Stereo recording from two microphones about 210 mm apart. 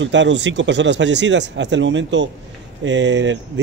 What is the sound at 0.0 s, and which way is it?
Speech, 60° right (ahead or behind).